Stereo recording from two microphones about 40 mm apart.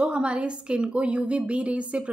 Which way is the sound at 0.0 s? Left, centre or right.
Right.